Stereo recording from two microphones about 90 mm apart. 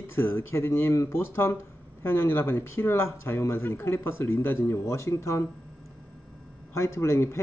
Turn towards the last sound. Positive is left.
turn(degrees=30)  # may be behind; listen again after turning